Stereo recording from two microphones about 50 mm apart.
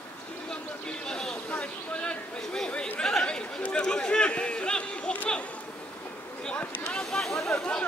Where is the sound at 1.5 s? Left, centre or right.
Left.